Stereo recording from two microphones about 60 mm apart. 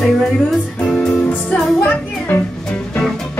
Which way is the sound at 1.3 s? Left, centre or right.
Left.